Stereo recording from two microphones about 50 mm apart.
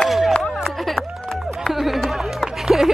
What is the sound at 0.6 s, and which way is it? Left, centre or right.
Run, centre.